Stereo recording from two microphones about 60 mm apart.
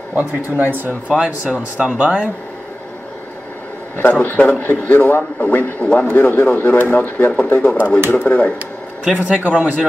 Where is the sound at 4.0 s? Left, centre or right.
Left.